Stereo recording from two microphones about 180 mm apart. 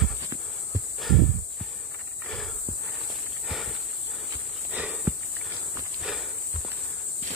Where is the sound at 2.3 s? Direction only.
Centre (ahead or behind).